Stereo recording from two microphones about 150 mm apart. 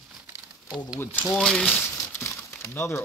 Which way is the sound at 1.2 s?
Centre (ahead or behind).